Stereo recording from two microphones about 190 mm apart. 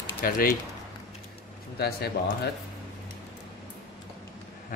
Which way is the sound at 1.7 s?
55° left (ahead or behind).